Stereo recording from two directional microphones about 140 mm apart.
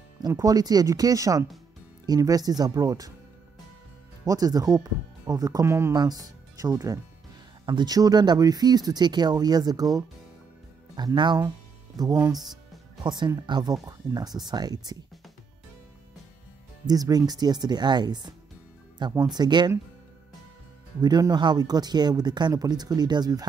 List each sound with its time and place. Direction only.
0.3 s speech: 25° right (ahead or behind)
4.2 s speech: 25° right (ahead or behind)
16.8 s speech: 30° right (ahead or behind)
21.0 s speech: 30° right (ahead or behind)